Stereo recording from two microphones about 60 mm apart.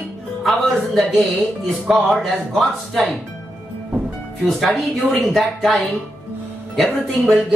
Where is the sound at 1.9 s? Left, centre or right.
Centre.